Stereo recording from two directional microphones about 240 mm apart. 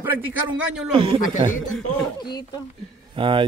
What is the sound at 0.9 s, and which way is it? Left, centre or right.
Speech, right.